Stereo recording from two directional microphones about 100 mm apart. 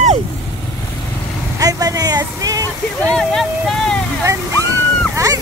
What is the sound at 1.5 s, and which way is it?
Vehicle, 35° right (ahead or behind).